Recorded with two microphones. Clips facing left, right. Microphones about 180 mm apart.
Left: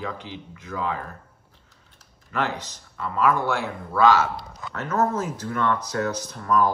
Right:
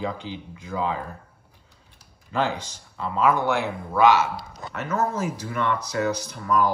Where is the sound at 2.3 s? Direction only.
30° right (ahead or behind).